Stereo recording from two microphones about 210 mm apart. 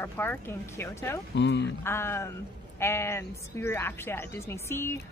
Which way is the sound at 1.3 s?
55° left (ahead or behind).